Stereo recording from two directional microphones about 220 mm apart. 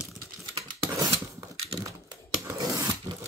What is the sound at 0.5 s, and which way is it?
Scissors, 15° right (ahead or behind).